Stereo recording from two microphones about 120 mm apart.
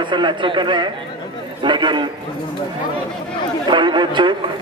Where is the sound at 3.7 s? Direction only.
40° right (ahead or behind).